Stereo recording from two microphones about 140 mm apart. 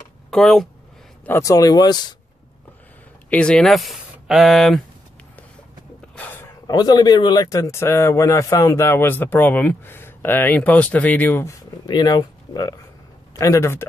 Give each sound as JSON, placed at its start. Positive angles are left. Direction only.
{"t": 0.3, "sound": "speech", "side_deg": 5}
{"t": 1.2, "sound": "speech", "side_deg": 20}
{"t": 3.3, "sound": "speech", "side_deg": 5}
{"t": 6.1, "sound": "a sound", "side_deg": 15}
{"t": 6.7, "sound": "a man's voice", "side_deg": 30}
{"t": 11.8, "sound": "speech", "side_deg": 30}